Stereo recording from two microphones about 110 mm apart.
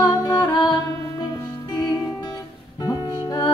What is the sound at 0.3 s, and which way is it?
Music, 40° left (ahead or behind).